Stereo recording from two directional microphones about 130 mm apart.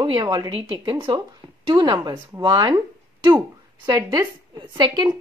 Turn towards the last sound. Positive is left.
turn(degrees=-30)  # may be behind; listen again after turning